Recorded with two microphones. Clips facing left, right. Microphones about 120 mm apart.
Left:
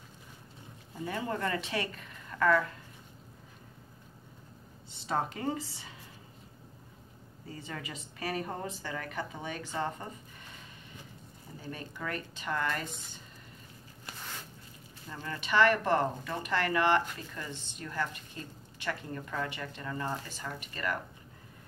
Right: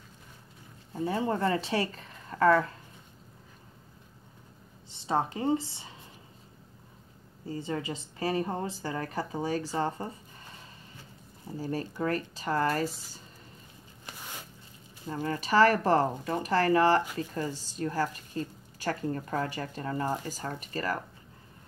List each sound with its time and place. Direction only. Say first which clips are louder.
0.9 s a woman's voice: right 6 dB; 25° right (ahead or behind)
4.9 s speech: right 4 dB; 25° right (ahead or behind)
7.4 s a woman's voice: right 8 dB; 30° right (ahead or behind)
11.5 s a woman's voice: right 9 dB; 35° right (ahead or behind)
15.1 s a woman's voice: right 4 dB; 35° right (ahead or behind)